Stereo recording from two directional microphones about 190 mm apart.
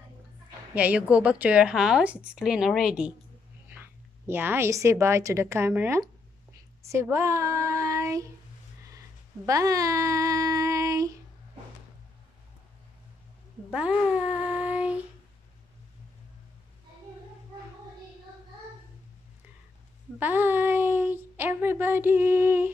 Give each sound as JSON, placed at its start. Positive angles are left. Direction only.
{"t": 0.7, "sound": "a woman's voice", "side_deg": -5}
{"t": 4.3, "sound": "a woman's voice", "side_deg": -10}
{"t": 9.5, "sound": "child singing", "side_deg": -15}
{"t": 13.7, "sound": "child singing", "side_deg": -5}
{"t": 20.2, "sound": "speech", "side_deg": -10}